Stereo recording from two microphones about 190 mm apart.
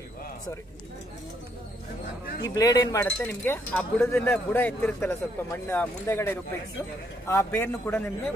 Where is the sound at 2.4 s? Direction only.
20° left (ahead or behind).